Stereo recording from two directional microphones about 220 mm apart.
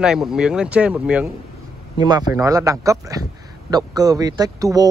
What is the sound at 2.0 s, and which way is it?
Speech, 20° right (ahead or behind).